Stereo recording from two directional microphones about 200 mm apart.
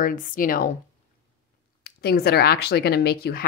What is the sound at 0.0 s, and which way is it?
Speech, 45° left (ahead or behind).